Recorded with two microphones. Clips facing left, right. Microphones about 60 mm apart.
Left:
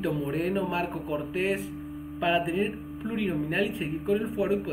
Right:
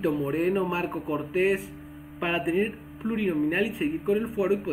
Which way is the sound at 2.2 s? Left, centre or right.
Centre.